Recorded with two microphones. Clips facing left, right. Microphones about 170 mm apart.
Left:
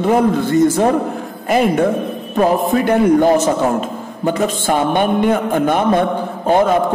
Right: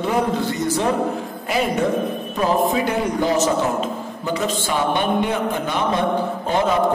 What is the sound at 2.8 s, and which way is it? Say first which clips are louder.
A man's voice: left 9 dB; 55° left (ahead or behind).